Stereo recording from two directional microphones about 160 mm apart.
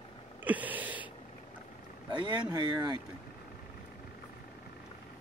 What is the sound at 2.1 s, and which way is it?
Speech, 30° right (ahead or behind).